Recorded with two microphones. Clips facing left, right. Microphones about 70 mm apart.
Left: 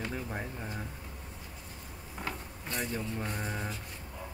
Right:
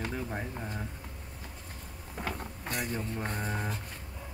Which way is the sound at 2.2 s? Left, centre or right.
Right.